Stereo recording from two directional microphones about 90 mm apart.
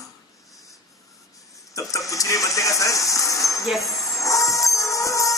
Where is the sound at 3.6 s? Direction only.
Centre (ahead or behind).